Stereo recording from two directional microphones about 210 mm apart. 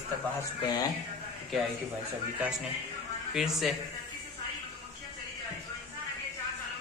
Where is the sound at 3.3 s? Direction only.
Centre (ahead or behind).